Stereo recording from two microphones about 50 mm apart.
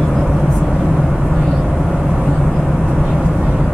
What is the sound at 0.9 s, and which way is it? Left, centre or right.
Vehicle, centre.